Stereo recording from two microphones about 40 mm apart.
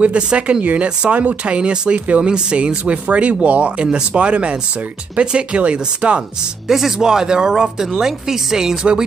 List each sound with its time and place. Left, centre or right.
0.0 s speech: right
6.7 s speech: centre